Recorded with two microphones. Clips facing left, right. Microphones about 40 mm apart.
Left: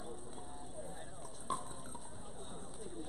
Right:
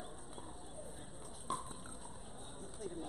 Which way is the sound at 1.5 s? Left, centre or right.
Centre.